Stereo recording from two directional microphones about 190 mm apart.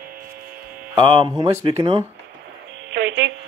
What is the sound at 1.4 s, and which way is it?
Speech, 15° right (ahead or behind).